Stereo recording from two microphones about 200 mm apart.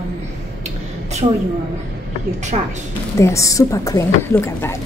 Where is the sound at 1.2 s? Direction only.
30° right (ahead or behind).